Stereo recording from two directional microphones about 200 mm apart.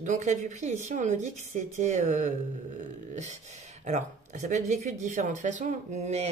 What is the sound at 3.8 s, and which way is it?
A woman's voice, 35° right (ahead or behind).